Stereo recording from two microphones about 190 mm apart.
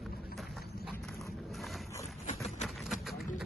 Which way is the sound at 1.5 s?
Centre (ahead or behind).